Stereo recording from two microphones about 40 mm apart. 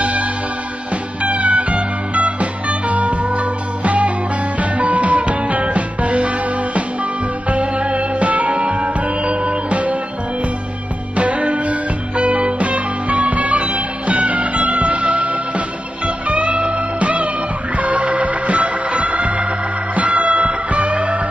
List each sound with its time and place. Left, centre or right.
0.0 s music: right
11.1 s music: right